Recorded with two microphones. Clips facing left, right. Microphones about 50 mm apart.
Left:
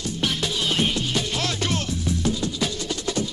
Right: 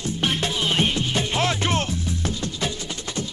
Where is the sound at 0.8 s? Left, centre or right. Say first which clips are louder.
Right 1 dB; right.